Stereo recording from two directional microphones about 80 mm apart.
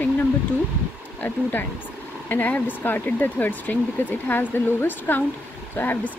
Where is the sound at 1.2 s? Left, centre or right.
Left.